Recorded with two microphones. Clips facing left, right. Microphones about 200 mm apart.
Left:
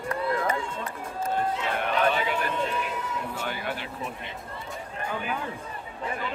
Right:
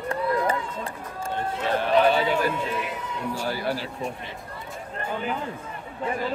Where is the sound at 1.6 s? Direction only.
30° right (ahead or behind).